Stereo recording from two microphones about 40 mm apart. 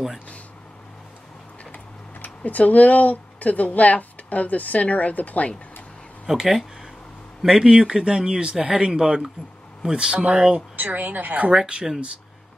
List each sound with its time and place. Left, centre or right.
2.2 s speech: left
6.2 s speech: centre
8.0 s speech: right
10.8 s a woman's voice: right
11.5 s speech: right